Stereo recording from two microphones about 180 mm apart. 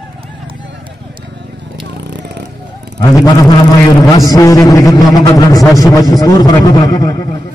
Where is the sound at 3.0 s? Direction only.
20° left (ahead or behind).